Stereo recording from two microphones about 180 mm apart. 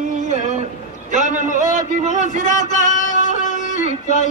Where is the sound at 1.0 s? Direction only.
45° right (ahead or behind).